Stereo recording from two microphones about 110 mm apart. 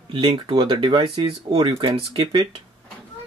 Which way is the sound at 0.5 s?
50° right (ahead or behind).